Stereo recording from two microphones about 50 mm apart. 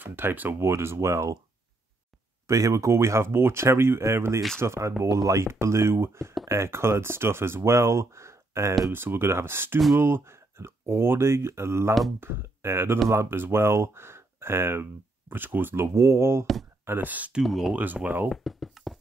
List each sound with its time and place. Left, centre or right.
0.0 s speech: right
0.6 s speech: right
2.4 s speech: right
4.6 s speech: right
8.9 s speech: right
12.2 s speech: right
16.8 s speech: right
17.4 s speech: centre
18.3 s a sound: centre